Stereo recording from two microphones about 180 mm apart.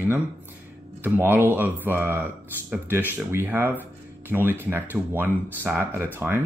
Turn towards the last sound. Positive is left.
turn(degrees=-15)  # may be behind; listen again after turning